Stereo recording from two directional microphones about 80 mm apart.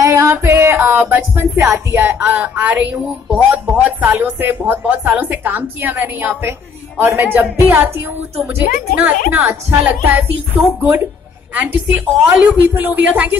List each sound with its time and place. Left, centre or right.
0.0 s music: right
2.0 s speech: right